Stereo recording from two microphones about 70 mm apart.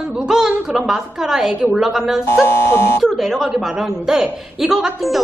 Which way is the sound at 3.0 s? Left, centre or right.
Centre.